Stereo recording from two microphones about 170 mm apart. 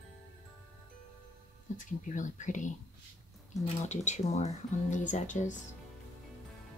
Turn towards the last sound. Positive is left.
turn(degrees=45)  # may be behind; listen again after turning